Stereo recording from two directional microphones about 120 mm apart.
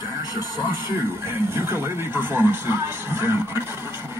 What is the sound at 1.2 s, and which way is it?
Speech, 20° right (ahead or behind).